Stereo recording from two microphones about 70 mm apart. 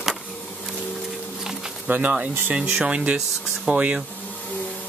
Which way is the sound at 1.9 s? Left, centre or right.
Right.